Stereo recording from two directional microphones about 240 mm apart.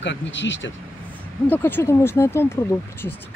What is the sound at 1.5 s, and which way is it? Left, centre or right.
Speech, centre.